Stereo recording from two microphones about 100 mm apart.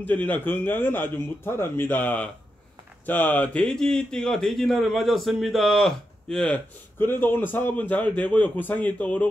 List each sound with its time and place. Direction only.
0.0 s speech: 15° left (ahead or behind)
7.0 s a man's voice: 20° left (ahead or behind)